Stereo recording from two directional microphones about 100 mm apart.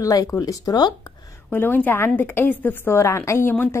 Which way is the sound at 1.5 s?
20° left (ahead or behind).